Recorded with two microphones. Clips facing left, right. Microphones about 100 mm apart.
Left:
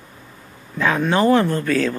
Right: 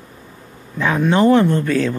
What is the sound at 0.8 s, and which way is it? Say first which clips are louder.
Speech: right 1 dB; 10° right (ahead or behind).